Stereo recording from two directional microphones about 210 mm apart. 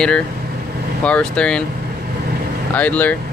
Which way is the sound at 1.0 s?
5° left (ahead or behind).